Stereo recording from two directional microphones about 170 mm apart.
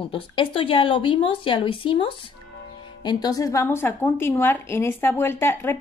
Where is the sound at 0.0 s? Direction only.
30° left (ahead or behind).